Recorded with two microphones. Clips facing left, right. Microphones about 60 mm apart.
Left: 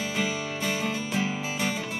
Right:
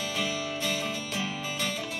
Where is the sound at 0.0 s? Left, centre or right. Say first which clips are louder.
Left 2 dB; centre.